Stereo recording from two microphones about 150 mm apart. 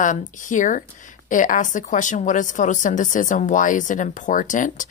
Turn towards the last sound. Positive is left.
turn(degrees=60)  # may be behind; listen again after turning